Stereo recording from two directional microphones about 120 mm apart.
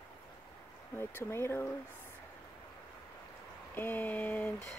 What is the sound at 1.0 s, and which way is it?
Speech, 20° left (ahead or behind).